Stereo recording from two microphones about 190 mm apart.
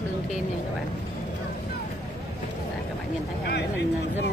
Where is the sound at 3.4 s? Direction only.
60° left (ahead or behind).